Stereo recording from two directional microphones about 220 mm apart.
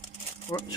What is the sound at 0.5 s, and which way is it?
Speech, 20° left (ahead or behind).